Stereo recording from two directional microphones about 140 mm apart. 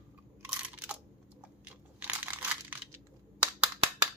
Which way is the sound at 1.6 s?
10° right (ahead or behind).